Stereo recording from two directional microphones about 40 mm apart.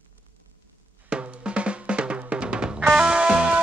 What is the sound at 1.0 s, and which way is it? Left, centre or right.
Drum, right.